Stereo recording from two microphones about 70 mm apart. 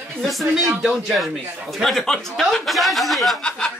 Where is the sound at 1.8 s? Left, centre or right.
Centre.